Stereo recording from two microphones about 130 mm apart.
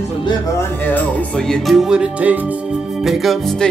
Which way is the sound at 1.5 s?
Centre (ahead or behind).